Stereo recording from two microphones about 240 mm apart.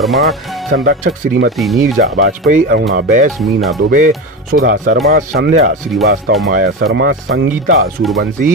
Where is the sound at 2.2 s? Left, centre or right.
Right.